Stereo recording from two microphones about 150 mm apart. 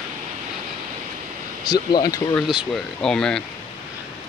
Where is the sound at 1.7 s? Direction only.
25° left (ahead or behind).